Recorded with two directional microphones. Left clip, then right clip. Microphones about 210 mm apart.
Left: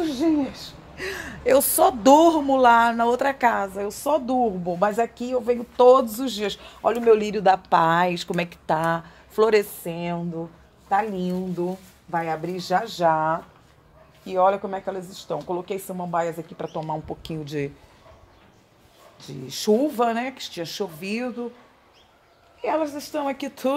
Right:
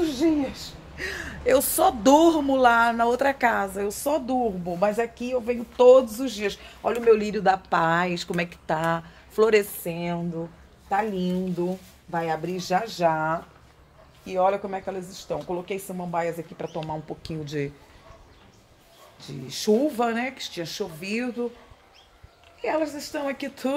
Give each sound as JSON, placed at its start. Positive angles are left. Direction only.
{"t": 0.0, "sound": "speech", "side_deg": 35}
{"t": 4.3, "sound": "speech", "side_deg": 35}
{"t": 19.1, "sound": "speech", "side_deg": 25}
{"t": 22.6, "sound": "speech", "side_deg": 30}